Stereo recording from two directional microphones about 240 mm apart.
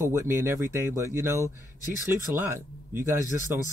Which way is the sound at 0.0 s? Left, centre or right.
Centre.